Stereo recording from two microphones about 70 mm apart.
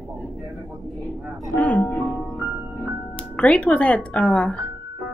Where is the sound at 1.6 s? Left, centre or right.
Left.